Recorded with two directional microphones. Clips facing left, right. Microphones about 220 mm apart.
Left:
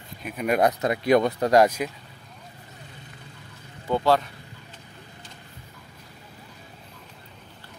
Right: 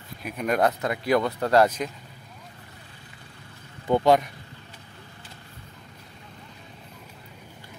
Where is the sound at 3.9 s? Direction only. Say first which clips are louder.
Right 2 dB; 15° right (ahead or behind).